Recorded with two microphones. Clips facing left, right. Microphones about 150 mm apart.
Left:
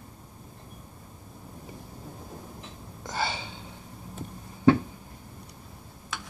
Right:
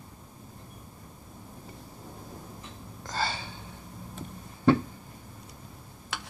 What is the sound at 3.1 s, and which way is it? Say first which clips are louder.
Gasp: left 1 dB; 20° left (ahead or behind).